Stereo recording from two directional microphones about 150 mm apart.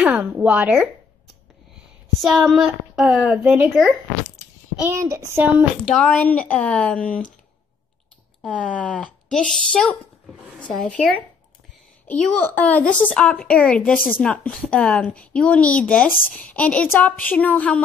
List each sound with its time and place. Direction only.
0.0 s a woman's voice: 10° right (ahead or behind)
2.2 s a woman's voice: centre (ahead or behind); by 5.5 s 15° right (ahead or behind)
5.9 s speech: 10° left (ahead or behind)
8.5 s speech: 5° left (ahead or behind)